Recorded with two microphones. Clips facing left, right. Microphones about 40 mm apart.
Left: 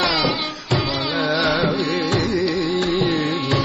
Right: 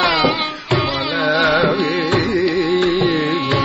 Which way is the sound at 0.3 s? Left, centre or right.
Right.